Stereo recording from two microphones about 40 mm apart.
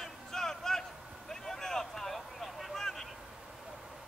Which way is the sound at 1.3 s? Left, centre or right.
Centre.